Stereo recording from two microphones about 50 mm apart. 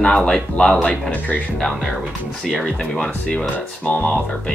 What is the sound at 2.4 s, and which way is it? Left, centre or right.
Speech, centre.